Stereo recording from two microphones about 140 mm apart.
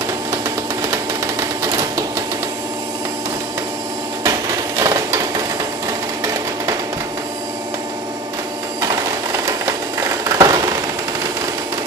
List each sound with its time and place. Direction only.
0.8 s sewing machine: 20° right (ahead or behind)
4.2 s hammer: 25° right (ahead or behind)
9.5 s a sound: 20° right (ahead or behind)